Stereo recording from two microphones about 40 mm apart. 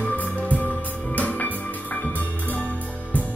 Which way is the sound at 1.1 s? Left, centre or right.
Left.